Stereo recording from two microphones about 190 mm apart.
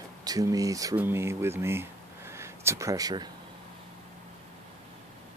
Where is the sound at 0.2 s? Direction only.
20° right (ahead or behind).